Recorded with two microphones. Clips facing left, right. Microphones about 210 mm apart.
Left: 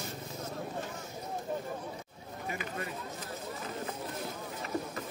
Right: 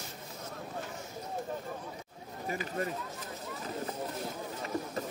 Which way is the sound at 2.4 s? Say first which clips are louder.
Right 4 dB; 40° right (ahead or behind).